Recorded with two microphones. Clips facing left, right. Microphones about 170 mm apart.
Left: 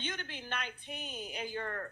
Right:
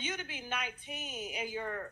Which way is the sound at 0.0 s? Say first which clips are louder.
Right 1 dB; 5° right (ahead or behind).